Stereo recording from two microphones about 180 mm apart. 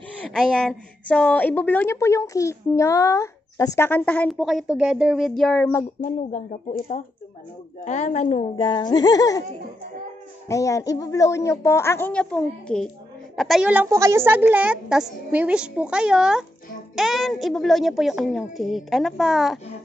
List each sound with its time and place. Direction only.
0.2 s a woman's voice: 5° left (ahead or behind)
5.9 s speech: 45° left (ahead or behind); by 9.4 s 20° left (ahead or behind)
10.5 s a woman's voice: 15° left (ahead or behind); by 19.6 s centre (ahead or behind)